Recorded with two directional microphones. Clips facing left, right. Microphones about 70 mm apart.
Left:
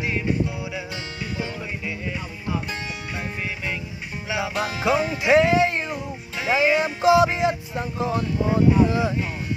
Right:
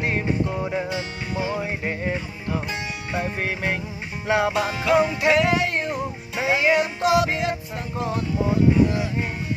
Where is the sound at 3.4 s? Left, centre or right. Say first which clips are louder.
Right 4 dB; right.